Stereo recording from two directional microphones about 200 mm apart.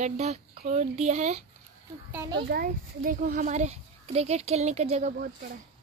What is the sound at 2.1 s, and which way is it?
Speech, 10° right (ahead or behind).